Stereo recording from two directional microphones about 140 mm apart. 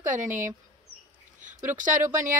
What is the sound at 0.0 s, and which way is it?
Speech, 65° right (ahead or behind).